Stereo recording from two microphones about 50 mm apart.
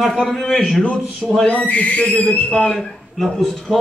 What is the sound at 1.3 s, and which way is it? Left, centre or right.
A man's voice, left.